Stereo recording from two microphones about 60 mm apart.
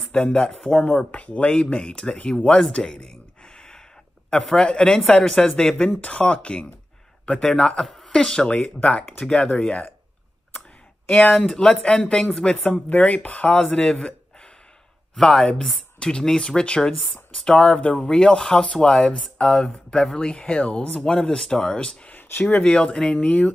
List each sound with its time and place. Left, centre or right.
0.1 s speech: centre
2.7 s a sound: centre
4.3 s speech: centre
11.3 s speech: centre
12.9 s speech: left
22.1 s a sound: left
22.6 s speech: centre
23.2 s speech: left